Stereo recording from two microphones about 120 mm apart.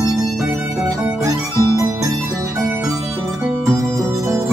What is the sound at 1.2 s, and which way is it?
Music, 25° right (ahead or behind).